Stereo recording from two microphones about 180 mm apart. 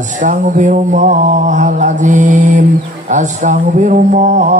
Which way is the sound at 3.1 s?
40° right (ahead or behind).